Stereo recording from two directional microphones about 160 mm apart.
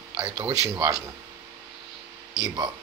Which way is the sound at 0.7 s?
20° right (ahead or behind).